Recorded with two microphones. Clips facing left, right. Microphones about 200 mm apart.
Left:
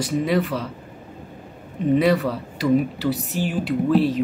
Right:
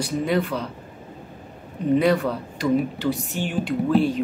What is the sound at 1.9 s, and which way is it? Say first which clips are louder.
Speech: left 1 dB; centre (ahead or behind).